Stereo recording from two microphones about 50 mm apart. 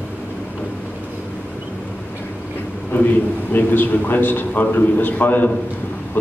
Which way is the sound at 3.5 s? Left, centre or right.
Left.